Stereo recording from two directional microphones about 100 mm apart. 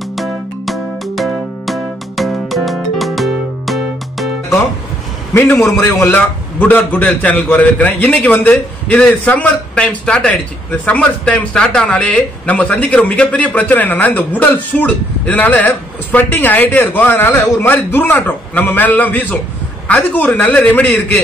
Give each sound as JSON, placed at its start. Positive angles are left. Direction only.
{"t": 0.1, "sound": "music", "side_deg": 0}
{"t": 5.3, "sound": "speech", "side_deg": 20}